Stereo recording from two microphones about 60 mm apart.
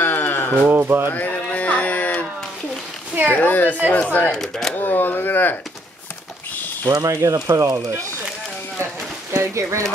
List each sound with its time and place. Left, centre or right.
0.0 s sheep: left
0.7 s speech: right
1.1 s music: left
3.3 s speech: left
4.3 s speech: centre
4.7 s speech: left
6.9 s speech: right
9.3 s speech: right